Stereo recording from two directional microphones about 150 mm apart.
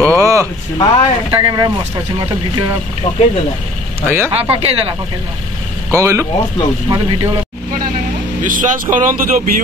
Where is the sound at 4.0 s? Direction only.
15° right (ahead or behind).